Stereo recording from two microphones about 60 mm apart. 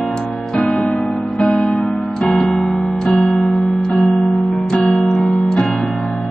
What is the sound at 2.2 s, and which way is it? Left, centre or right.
Music, centre.